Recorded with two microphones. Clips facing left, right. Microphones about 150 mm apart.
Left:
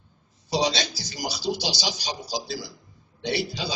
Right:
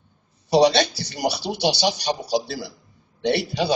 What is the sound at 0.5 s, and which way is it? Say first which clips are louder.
A man's voice: right 9 dB; 60° right (ahead or behind).